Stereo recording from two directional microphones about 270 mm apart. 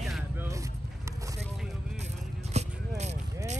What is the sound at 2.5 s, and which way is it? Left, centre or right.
Vehicle, right.